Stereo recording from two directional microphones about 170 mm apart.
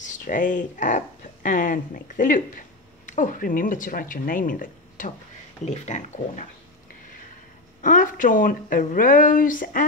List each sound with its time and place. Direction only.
0.0 s speech: 50° left (ahead or behind)
7.8 s speech: 50° left (ahead or behind)